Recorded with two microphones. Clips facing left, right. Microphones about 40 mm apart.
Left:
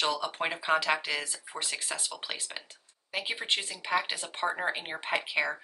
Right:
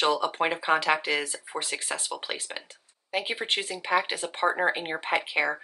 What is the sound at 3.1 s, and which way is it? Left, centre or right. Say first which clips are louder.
Speech: right 3 dB; centre.